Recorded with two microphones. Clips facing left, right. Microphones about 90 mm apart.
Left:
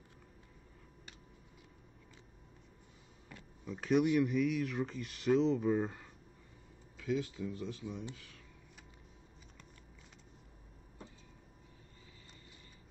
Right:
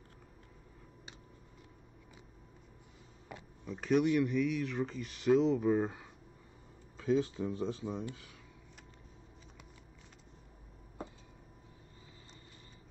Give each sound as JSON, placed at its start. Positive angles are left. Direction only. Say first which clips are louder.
{"t": 3.6, "sound": "speech", "louder": "right 1 dB", "side_deg": 0}
{"t": 7.0, "sound": "speech", "louder": "right 5 dB", "side_deg": -30}